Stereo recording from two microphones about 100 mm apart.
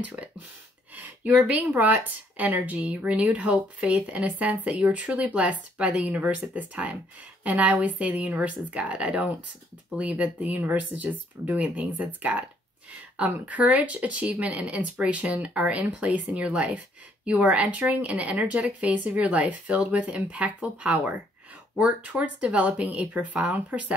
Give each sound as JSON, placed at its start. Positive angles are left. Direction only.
{"t": 0.0, "sound": "speech", "side_deg": -15}
{"t": 0.9, "sound": "a sound", "side_deg": -15}
{"t": 1.4, "sound": "speech", "side_deg": -15}